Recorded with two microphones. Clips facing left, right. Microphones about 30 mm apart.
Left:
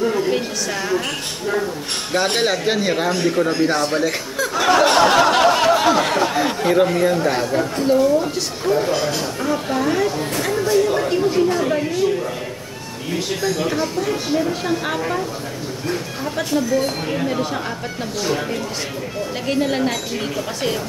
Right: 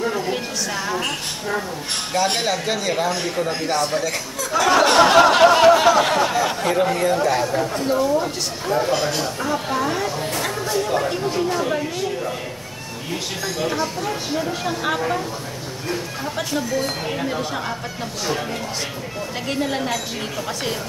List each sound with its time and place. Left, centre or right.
0.3 s a sound: centre
2.1 s speech: left
2.4 s speech: left
3.5 s speech: centre
3.9 s speech: left
4.6 s speech: centre
6.3 s speech: centre
9.4 s speech: centre
19.5 s speech: centre